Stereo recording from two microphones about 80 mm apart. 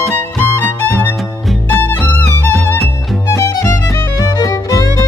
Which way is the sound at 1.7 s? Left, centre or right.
Left.